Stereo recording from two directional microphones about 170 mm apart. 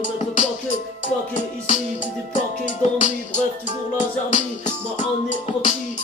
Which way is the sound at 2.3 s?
45° left (ahead or behind).